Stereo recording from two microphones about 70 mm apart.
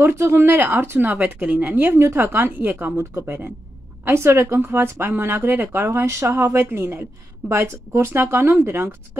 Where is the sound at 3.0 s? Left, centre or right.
Right.